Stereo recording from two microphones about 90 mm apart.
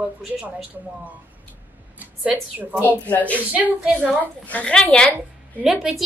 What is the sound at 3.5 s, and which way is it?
Speech, 15° right (ahead or behind).